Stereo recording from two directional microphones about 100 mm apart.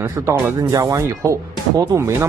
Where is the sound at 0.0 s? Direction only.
30° right (ahead or behind).